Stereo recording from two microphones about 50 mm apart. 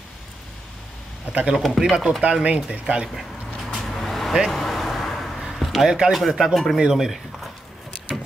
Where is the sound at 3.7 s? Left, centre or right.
Centre.